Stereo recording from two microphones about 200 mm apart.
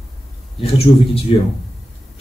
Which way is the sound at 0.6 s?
30° left (ahead or behind).